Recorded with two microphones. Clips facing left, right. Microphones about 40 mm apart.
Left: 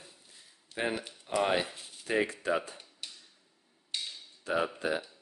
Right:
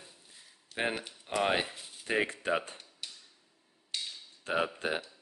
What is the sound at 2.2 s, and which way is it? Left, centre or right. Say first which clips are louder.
Speech: left 1 dB; right.